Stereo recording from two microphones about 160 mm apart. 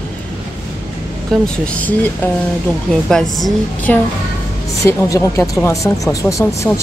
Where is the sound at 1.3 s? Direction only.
Centre (ahead or behind).